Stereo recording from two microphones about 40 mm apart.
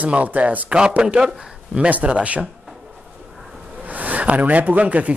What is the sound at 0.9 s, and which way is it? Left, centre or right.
Speech, right.